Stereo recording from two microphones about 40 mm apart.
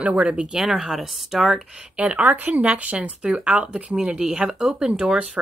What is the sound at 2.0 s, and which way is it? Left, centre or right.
Speech, right.